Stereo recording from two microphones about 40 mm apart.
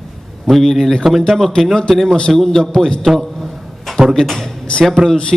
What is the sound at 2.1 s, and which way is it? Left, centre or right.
Speech, centre.